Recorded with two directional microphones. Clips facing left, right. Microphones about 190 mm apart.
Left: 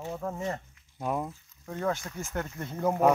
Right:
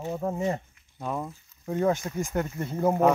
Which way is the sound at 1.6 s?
20° right (ahead or behind).